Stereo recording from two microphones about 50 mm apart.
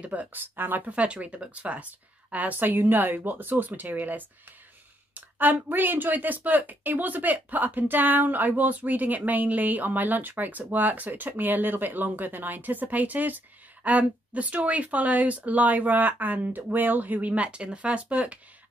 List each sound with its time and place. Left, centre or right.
0.0 s speech: right
0.3 s speech: right
0.8 s speech: right